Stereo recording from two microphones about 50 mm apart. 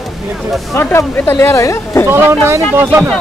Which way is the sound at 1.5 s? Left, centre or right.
Left.